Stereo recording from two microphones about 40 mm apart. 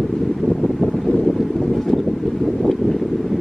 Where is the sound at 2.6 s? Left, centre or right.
Centre.